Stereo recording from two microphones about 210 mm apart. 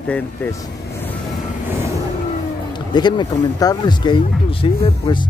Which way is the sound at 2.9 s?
20° left (ahead or behind).